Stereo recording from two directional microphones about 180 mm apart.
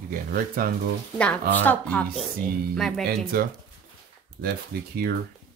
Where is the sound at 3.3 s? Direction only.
55° right (ahead or behind).